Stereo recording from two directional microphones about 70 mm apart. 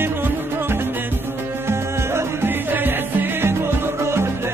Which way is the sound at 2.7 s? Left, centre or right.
Right.